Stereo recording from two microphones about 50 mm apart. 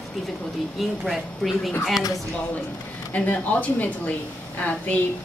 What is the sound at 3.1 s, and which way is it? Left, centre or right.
A woman's voice, left.